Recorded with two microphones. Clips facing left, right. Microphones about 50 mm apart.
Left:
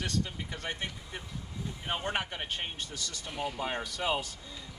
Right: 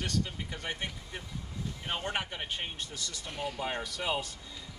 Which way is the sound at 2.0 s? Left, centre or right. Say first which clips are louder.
Left 1 dB; centre.